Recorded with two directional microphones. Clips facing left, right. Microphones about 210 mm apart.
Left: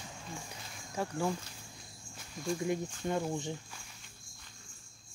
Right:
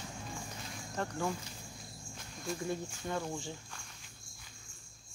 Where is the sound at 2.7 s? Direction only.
20° left (ahead or behind).